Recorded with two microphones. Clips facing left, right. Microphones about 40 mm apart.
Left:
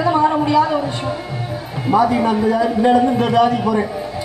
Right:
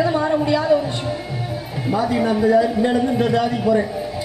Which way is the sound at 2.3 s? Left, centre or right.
Centre.